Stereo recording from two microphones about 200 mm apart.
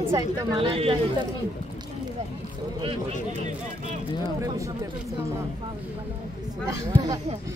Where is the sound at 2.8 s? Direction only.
30° right (ahead or behind).